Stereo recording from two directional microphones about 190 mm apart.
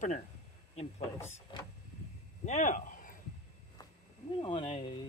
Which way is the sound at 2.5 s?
40° left (ahead or behind).